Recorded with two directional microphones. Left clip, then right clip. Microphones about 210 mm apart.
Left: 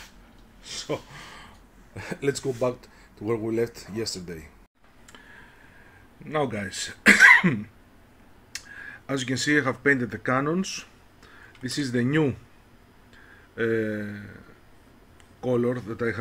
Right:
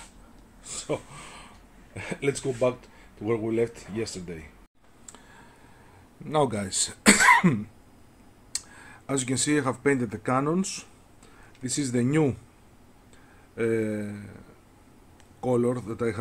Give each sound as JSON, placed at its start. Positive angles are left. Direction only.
{"t": 0.7, "sound": "a sound", "side_deg": -5}
{"t": 2.0, "sound": "speech", "side_deg": 0}
{"t": 6.2, "sound": "speech", "side_deg": -15}
{"t": 8.5, "sound": "speech", "side_deg": -5}
{"t": 13.6, "sound": "speech", "side_deg": 0}
{"t": 15.4, "sound": "speech", "side_deg": -5}